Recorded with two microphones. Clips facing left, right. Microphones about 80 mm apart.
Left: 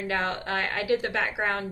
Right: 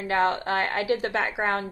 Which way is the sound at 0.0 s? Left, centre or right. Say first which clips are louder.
Right 5 dB; right.